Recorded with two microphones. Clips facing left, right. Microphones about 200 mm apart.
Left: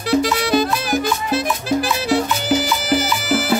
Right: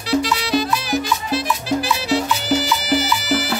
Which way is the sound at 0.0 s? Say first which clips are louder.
Left 2 dB; 50° left (ahead or behind).